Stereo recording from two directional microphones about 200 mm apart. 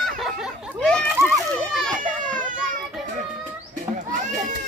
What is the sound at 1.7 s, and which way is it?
Children playing, 5° left (ahead or behind).